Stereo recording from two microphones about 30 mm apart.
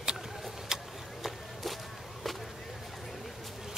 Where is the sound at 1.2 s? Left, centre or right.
Centre.